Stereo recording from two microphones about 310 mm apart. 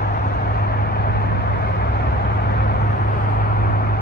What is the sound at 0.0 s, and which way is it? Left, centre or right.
Vehicle, left.